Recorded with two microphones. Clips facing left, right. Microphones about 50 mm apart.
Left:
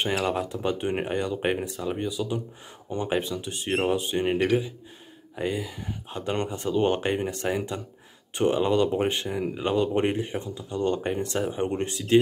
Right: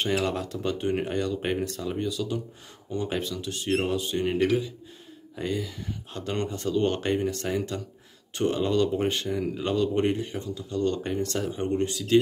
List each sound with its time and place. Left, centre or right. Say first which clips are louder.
0.2 s speech: left 2 dB; centre